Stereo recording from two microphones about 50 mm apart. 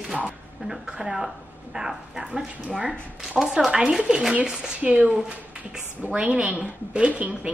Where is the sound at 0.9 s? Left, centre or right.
Centre.